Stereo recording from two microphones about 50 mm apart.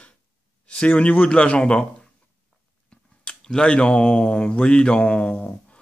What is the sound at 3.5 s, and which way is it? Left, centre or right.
Speech, centre.